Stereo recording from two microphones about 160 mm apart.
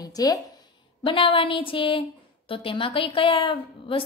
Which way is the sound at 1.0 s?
30° left (ahead or behind).